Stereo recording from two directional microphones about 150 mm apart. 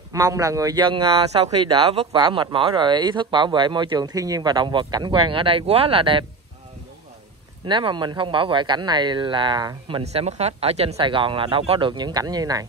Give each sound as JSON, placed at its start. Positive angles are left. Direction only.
{"t": 0.1, "sound": "a man's voice", "side_deg": -20}
{"t": 7.6, "sound": "a man's voice", "side_deg": -30}